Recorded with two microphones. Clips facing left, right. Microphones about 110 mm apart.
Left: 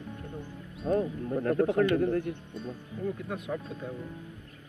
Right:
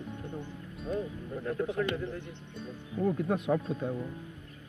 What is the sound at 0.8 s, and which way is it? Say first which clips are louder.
Speech: left 7 dB; 60° left (ahead or behind).